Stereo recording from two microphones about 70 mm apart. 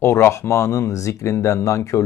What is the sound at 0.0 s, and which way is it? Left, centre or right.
Speech, left.